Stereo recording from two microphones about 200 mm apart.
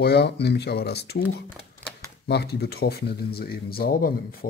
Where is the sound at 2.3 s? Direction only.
55° left (ahead or behind).